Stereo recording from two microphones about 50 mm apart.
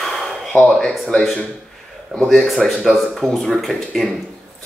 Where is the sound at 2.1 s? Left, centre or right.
Centre.